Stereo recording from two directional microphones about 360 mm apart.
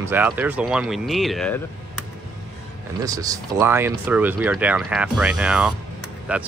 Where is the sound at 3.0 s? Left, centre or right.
Centre.